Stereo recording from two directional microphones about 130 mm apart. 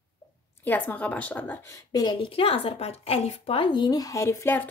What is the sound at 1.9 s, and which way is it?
A woman's voice, 35° left (ahead or behind).